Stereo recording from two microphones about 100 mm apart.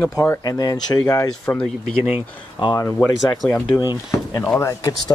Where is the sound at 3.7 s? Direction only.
30° left (ahead or behind).